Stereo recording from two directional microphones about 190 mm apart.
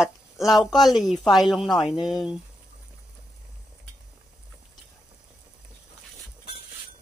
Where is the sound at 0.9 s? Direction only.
Centre (ahead or behind).